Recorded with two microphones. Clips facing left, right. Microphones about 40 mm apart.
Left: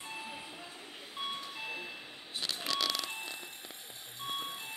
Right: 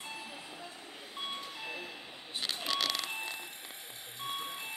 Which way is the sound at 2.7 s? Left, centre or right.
Right.